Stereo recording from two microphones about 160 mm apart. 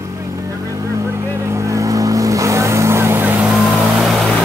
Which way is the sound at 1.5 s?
20° right (ahead or behind).